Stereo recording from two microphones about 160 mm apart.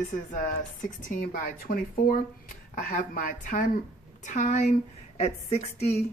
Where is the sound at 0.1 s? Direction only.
55° left (ahead or behind).